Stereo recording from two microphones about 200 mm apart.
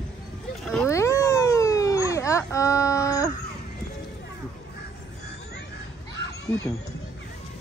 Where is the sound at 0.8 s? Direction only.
15° left (ahead or behind).